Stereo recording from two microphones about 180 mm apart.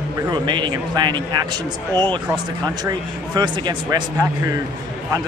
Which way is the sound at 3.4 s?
25° right (ahead or behind).